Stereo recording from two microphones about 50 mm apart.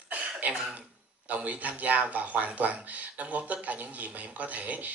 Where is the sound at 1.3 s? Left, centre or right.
Right.